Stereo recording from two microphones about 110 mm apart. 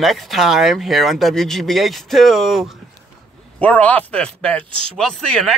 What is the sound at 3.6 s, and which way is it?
Speech, 15° left (ahead or behind).